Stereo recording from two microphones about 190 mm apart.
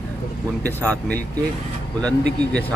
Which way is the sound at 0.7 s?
10° left (ahead or behind).